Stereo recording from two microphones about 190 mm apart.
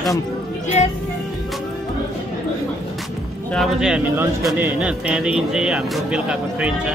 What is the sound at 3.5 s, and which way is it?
Speech, centre (ahead or behind).